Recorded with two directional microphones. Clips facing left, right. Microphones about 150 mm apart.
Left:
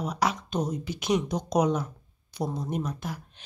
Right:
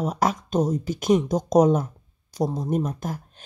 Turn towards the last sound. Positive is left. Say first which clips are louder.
# right 6 dB
turn(degrees=-45)  # may be behind; listen again after turning